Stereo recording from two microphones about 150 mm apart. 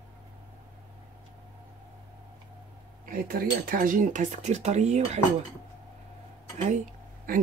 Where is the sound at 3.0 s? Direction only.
70° right (ahead or behind); by 5.0 s 50° right (ahead or behind).